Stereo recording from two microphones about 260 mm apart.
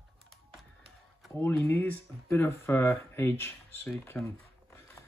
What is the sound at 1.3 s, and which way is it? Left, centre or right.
Speech, centre.